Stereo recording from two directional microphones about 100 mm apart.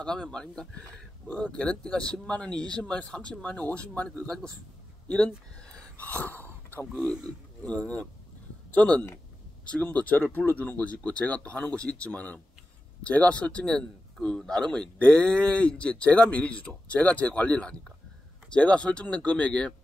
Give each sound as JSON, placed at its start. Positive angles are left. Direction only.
{"t": 0.0, "sound": "speech", "side_deg": 10}